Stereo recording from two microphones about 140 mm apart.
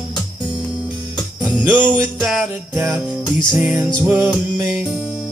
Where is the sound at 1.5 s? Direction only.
10° right (ahead or behind).